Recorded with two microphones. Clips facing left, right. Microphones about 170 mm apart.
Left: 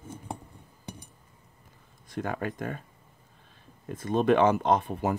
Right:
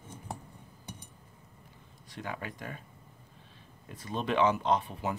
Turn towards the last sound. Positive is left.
turn(degrees=50)  # may be behind; listen again after turning